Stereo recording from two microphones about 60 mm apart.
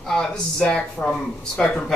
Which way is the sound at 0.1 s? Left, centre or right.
Centre.